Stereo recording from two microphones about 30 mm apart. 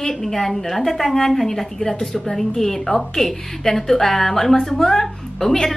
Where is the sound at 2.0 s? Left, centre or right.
Left.